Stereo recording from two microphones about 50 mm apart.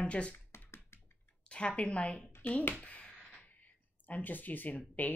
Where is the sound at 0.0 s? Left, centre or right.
Left.